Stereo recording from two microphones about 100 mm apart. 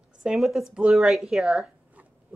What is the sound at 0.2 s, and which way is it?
A woman's voice, 5° right (ahead or behind).